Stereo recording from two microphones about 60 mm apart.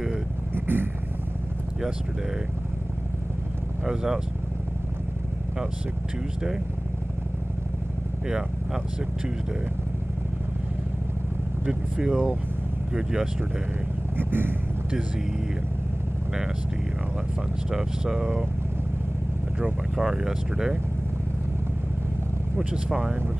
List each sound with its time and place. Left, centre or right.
0.6 s vehicle: right
3.8 s speech: centre
8.3 s speech: centre
11.6 s speech: centre
14.1 s speech: right
17.6 s speech: centre
20.0 s speech: centre
22.6 s speech: centre